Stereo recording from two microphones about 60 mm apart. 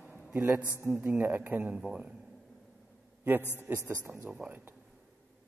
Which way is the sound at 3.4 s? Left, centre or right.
Left.